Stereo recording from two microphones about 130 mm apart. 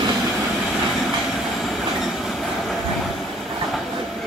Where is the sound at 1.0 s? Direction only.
Centre (ahead or behind).